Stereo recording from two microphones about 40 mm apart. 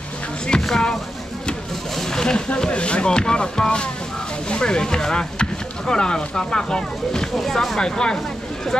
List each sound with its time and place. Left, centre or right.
0.5 s a sound: left
2.0 s speech: centre
7.3 s speech: centre